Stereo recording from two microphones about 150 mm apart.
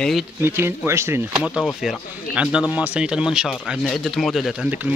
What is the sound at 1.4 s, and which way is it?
Speech, 5° right (ahead or behind).